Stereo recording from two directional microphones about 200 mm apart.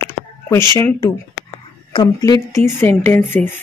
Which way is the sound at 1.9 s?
20° left (ahead or behind).